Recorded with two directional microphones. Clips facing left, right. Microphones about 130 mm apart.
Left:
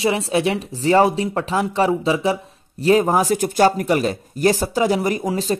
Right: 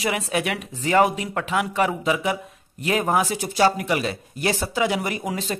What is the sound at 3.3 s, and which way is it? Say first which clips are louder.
Speech: left 4 dB; 50° left (ahead or behind).